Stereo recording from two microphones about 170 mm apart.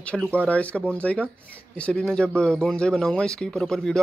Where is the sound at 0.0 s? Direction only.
5° left (ahead or behind).